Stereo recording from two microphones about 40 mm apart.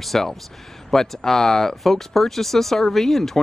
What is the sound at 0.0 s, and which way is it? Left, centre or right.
A man's voice, centre.